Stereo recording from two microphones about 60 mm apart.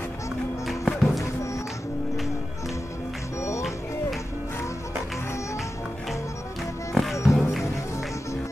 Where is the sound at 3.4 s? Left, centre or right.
Left.